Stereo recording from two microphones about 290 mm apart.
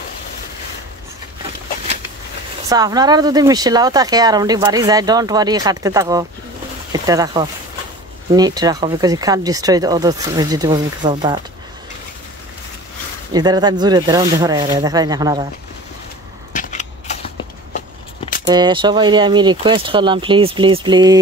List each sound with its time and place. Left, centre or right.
2.7 s speech: centre
13.3 s speech: centre
16.5 s a sound: left
17.7 s vehicle: left
18.5 s speech: centre